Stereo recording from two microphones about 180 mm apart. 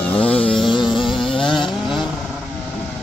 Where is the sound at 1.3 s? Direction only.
30° left (ahead or behind).